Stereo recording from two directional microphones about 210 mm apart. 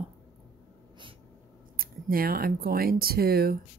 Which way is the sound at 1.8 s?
45° right (ahead or behind).